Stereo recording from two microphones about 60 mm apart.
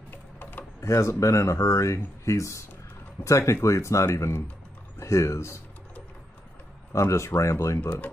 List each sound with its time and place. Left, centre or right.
0.4 s a sound: left
0.7 s speech: left
6.9 s speech: left